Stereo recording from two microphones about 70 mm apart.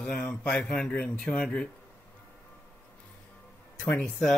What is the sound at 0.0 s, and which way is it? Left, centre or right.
Speech, centre.